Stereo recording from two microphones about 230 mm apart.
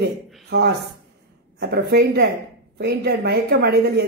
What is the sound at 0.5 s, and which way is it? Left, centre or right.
Speech, right.